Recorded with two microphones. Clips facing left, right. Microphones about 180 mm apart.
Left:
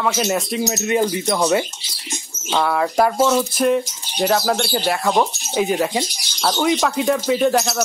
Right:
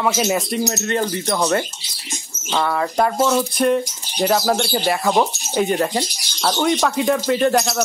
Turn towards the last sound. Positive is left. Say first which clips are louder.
# even
turn(degrees=0)  # may be behind; listen again after turning